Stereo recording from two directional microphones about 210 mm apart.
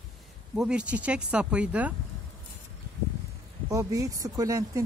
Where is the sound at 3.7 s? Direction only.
15° right (ahead or behind).